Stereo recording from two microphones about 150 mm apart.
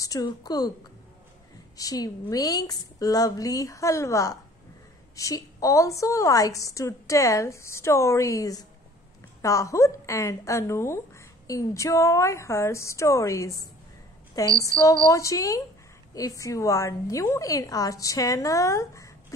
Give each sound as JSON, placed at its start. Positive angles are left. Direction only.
{"t": 0.0, "sound": "a woman's voice", "side_deg": 25}
{"t": 1.8, "sound": "a woman's voice", "side_deg": 25}